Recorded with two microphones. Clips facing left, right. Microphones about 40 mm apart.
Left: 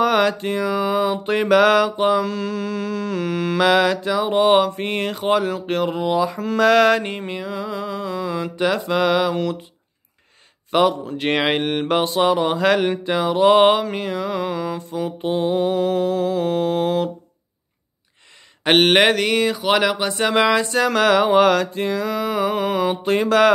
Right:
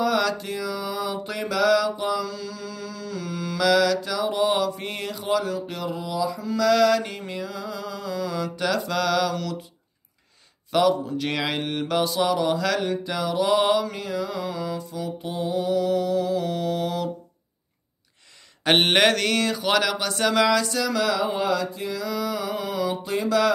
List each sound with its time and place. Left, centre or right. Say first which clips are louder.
0.0 s mantra: left 6 dB; left
10.7 s mantra: left 3 dB; left
18.6 s mantra: left 4 dB; left